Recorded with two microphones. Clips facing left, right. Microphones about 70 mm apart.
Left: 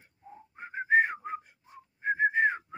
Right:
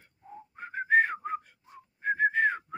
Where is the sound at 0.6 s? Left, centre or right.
Centre.